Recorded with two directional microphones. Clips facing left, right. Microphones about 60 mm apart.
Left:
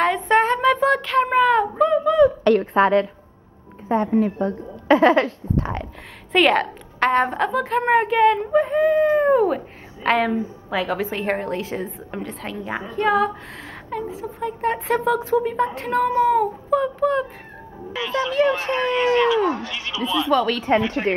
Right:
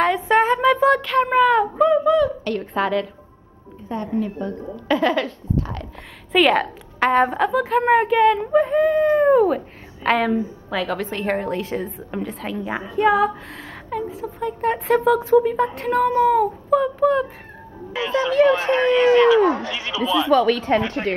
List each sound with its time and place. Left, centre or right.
0.0 s child singing: centre
2.7 s a woman's voice: left
6.3 s speech: centre
17.9 s speech: centre
20.6 s a woman's voice: centre